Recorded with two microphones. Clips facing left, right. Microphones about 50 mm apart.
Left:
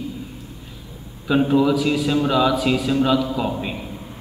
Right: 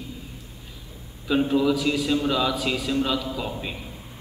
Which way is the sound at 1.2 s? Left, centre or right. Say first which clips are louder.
Left 4 dB; centre.